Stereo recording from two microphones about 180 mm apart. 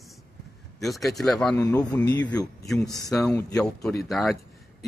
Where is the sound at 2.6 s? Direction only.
Centre (ahead or behind).